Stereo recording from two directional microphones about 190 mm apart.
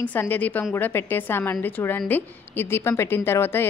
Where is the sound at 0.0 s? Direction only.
10° left (ahead or behind).